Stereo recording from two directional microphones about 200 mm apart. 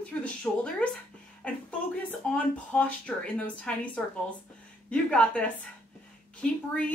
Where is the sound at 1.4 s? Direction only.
5° left (ahead or behind).